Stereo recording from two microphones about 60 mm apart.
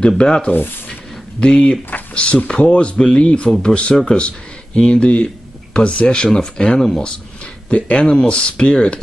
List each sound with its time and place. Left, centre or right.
0.2 s speech: centre